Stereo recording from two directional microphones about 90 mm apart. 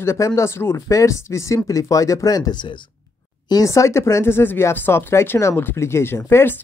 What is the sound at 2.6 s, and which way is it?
Speech, 65° left (ahead or behind).